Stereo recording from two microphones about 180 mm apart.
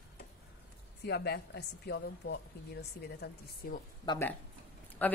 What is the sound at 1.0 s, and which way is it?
A woman's voice, 65° left (ahead or behind).